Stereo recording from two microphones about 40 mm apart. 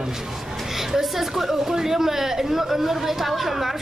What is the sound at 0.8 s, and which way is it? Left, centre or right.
A woman's voice, centre.